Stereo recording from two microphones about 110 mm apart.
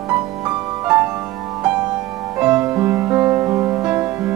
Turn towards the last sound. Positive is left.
turn(degrees=-20)  # may be behind; listen again after turning